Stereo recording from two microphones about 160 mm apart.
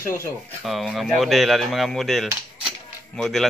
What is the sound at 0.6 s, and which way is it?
Speech, centre (ahead or behind).